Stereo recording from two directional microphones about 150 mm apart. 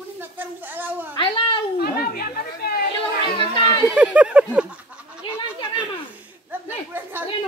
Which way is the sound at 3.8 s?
5° right (ahead or behind).